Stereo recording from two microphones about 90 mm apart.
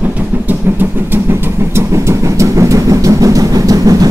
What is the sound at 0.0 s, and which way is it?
Vehicle, 20° right (ahead or behind).